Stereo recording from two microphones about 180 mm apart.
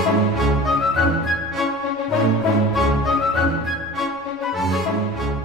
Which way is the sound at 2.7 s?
Centre (ahead or behind).